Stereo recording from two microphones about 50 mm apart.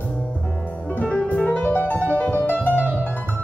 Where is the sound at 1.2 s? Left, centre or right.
Left.